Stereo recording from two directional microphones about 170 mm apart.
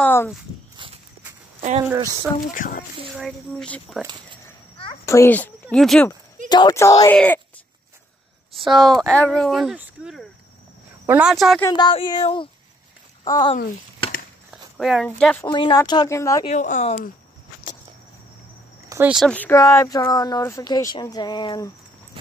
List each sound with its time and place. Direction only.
0.0 s walk: 15° left (ahead or behind)
1.9 s speech: 15° right (ahead or behind)
2.5 s speech: 50° left (ahead or behind)
3.2 s speech: 5° left (ahead or behind)
5.0 s speech: 15° left (ahead or behind)
6.5 s speech: 20° left (ahead or behind)
8.5 s speech: centre (ahead or behind)
11.6 s speech: 25° left (ahead or behind)
14.8 s speech: centre (ahead or behind)
15.4 s speech: 25° left (ahead or behind)
16.4 s speech: 45° left (ahead or behind)
18.9 s speech: 10° right (ahead or behind)
19.2 s speech: 10° left (ahead or behind); by 21.6 s 25° left (ahead or behind)